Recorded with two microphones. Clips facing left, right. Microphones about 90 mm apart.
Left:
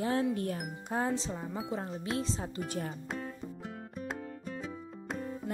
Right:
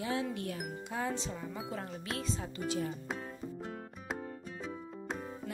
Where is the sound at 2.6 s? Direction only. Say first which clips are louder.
Right 7 dB; 50° left (ahead or behind).